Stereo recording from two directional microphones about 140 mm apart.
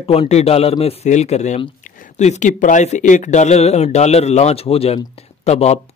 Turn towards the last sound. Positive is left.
turn(degrees=50)  # may be behind; listen again after turning